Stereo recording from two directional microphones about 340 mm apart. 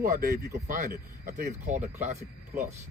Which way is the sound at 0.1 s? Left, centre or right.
Right.